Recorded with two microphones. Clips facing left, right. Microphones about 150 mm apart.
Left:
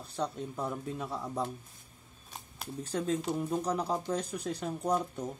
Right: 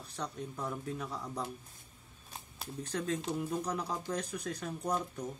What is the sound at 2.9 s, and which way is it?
Speech, 30° left (ahead or behind).